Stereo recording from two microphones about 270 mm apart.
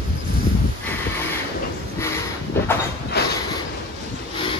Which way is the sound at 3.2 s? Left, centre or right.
Left.